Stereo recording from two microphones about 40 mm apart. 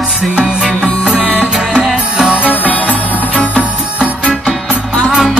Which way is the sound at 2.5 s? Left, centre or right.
Left.